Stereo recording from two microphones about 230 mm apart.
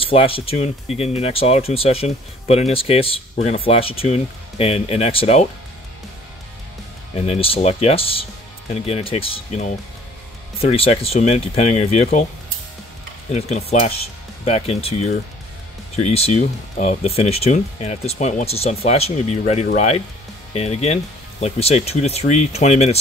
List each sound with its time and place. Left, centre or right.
0.0 s speech: left
7.2 s speech: left
10.7 s speech: left
13.3 s speech: left